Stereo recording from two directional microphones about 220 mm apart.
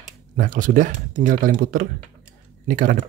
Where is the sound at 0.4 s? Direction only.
35° right (ahead or behind).